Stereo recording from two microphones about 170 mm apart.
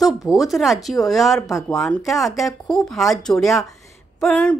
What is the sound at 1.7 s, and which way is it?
Speech, 5° left (ahead or behind).